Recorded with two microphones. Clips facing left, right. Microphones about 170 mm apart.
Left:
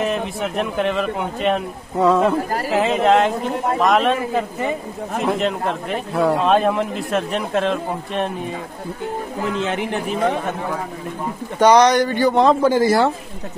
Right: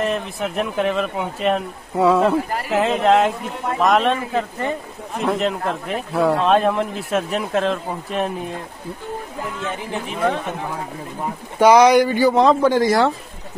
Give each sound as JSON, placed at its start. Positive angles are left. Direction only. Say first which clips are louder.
{"t": 0.0, "sound": "speech", "louder": "left 1 dB", "side_deg": 0}
{"t": 9.5, "sound": "speech", "louder": "left 7 dB", "side_deg": 85}
{"t": 11.6, "sound": "speech", "louder": "right 1 dB", "side_deg": -10}